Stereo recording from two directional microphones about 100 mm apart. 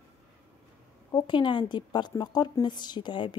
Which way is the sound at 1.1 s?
50° left (ahead or behind).